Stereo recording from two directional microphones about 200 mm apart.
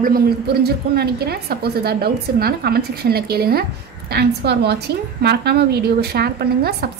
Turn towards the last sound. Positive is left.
turn(degrees=-50)  # may be behind; listen again after turning